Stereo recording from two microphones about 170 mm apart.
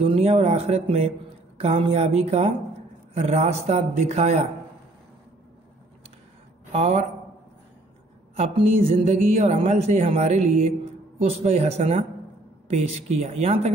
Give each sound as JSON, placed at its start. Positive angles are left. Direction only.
{"t": 0.0, "sound": "speech", "side_deg": -35}
{"t": 6.7, "sound": "speech", "side_deg": -40}
{"t": 8.4, "sound": "speech", "side_deg": -35}